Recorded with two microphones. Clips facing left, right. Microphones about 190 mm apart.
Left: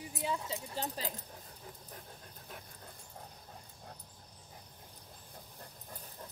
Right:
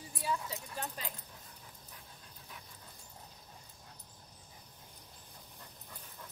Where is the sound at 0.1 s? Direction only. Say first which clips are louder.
Even; 20° left (ahead or behind).